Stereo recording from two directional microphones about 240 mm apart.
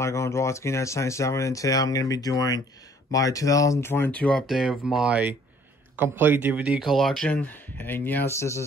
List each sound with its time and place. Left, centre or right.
0.0 s speech: centre